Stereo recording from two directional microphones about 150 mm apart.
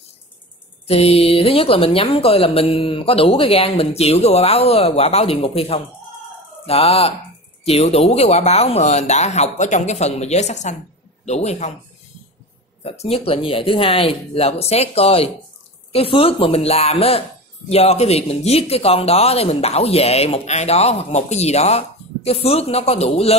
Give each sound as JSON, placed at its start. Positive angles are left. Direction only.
{"t": 0.8, "sound": "speech", "side_deg": 45}
{"t": 12.8, "sound": "speech", "side_deg": 45}